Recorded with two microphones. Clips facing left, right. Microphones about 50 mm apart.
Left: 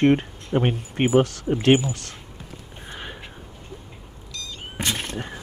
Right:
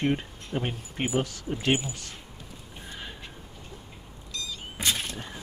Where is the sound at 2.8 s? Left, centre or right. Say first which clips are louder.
Left 5 dB; left.